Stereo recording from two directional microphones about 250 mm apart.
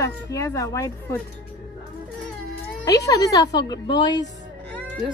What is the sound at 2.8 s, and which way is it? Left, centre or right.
Speech, centre.